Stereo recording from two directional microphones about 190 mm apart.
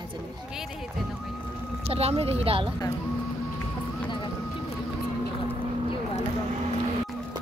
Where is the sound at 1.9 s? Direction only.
30° right (ahead or behind).